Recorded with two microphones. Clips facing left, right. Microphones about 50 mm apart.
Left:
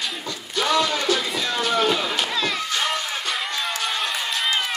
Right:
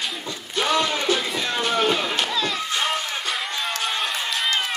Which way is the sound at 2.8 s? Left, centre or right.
Centre.